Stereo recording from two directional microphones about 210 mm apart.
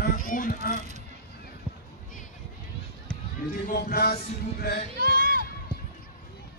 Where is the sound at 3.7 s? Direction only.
45° left (ahead or behind).